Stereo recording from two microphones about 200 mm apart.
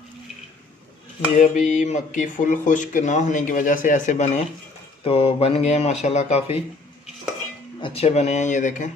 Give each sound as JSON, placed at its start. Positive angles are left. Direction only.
{"t": 1.3, "sound": "speech", "side_deg": 40}
{"t": 7.8, "sound": "speech", "side_deg": 30}